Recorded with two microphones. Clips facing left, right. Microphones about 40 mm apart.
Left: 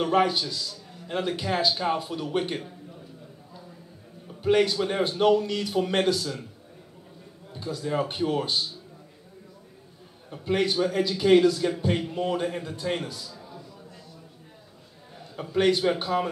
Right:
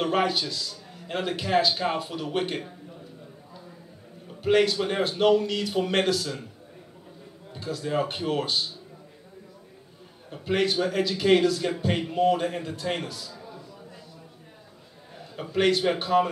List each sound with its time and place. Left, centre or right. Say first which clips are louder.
0.0 s a man's voice: left 2 dB; centre
4.4 s a man's voice: even; centre
4.7 s a man's voice: even; centre
7.5 s a man's voice: even; centre
10.3 s a man's voice: even; centre
12.3 s a man's voice: right 3 dB; centre
15.1 s a man's voice: even; centre